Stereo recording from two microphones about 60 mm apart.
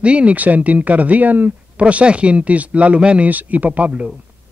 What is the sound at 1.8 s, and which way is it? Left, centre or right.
Speech, centre.